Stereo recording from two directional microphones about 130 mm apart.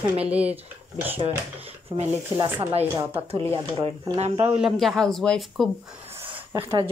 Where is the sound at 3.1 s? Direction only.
45° right (ahead or behind).